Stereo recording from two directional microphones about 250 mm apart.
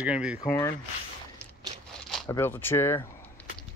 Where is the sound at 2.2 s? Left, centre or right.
Centre.